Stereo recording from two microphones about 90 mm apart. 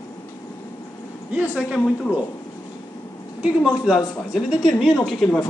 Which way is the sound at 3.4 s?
5° right (ahead or behind).